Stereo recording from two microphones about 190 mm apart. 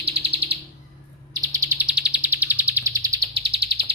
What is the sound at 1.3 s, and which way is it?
Bird, 15° right (ahead or behind).